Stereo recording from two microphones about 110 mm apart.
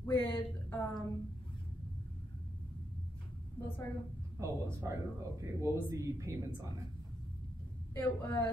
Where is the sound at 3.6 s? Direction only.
50° left (ahead or behind).